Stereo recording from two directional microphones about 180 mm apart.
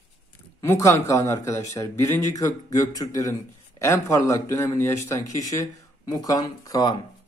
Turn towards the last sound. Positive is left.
turn(degrees=20)  # may be behind; listen again after turning